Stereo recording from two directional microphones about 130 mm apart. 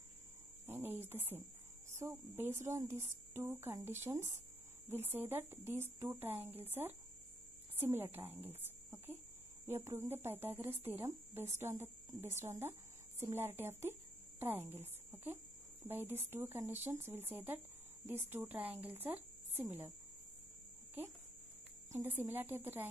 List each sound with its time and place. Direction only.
0.7 s a sound: 15° right (ahead or behind)
2.0 s speech: 15° right (ahead or behind)
21.9 s speech: 20° right (ahead or behind)